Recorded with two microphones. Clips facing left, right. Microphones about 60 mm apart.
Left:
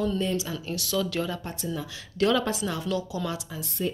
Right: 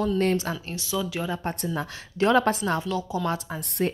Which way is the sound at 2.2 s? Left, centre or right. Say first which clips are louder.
Right 3 dB; right.